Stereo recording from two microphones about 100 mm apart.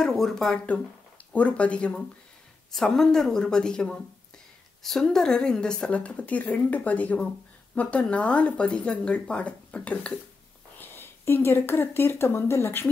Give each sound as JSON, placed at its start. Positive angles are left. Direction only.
{"t": 0.0, "sound": "a woman's voice", "side_deg": 5}